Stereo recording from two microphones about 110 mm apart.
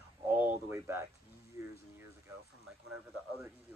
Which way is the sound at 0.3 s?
15° right (ahead or behind).